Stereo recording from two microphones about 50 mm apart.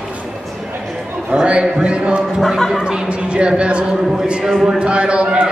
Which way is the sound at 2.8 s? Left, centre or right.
Centre.